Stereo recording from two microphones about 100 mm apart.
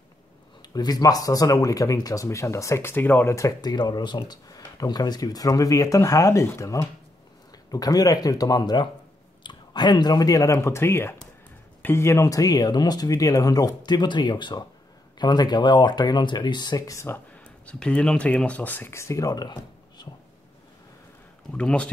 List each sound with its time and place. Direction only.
0.6 s speech: 40° left (ahead or behind)
3.7 s speech: 45° left (ahead or behind); by 17.2 s 30° left (ahead or behind)
17.6 s speech: 10° left (ahead or behind); by 20.1 s 45° left (ahead or behind)
21.5 s speech: 10° left (ahead or behind)